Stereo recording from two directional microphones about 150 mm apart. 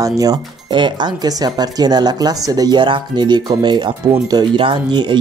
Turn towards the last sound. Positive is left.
turn(degrees=-30)  # may be behind; listen again after turning